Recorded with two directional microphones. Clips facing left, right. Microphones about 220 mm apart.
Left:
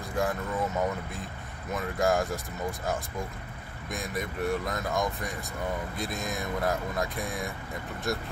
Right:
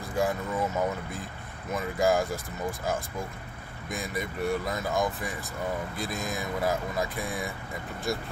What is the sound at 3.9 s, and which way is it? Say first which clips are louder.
Speech: even; centre (ahead or behind).